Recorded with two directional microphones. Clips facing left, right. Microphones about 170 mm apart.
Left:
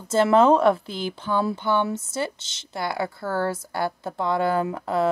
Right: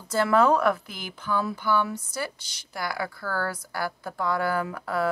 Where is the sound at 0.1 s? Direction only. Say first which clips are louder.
Left 4 dB; 25° left (ahead or behind).